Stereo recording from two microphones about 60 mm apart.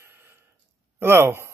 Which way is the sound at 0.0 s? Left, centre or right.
Right.